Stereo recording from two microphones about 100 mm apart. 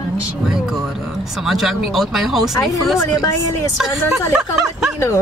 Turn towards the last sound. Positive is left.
turn(degrees=-5)  # may be behind; listen again after turning